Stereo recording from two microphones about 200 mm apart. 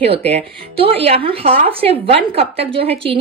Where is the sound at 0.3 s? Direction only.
30° right (ahead or behind).